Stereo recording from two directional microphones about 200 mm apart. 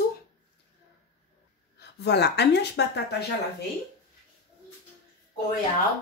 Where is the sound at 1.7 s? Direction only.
55° left (ahead or behind).